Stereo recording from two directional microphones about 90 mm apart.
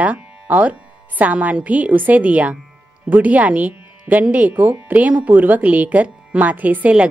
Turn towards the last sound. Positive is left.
turn(degrees=-15)  # may be behind; listen again after turning